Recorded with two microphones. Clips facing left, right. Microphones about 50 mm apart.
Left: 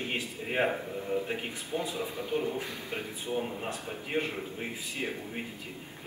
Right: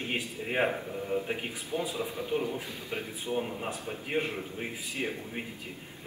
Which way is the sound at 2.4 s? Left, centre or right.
Left.